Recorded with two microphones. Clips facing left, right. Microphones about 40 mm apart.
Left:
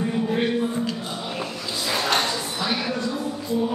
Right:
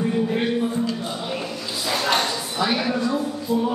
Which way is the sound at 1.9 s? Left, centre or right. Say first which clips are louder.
Right 1 dB; centre.